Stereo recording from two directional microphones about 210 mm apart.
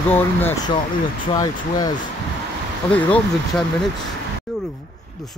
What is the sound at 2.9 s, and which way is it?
Speech, 5° left (ahead or behind).